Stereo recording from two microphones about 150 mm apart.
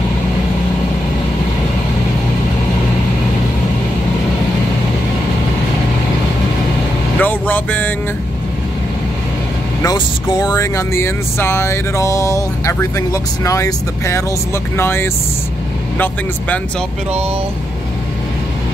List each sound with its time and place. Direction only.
7.2 s vehicle: 10° left (ahead or behind)
9.9 s speech: 30° left (ahead or behind)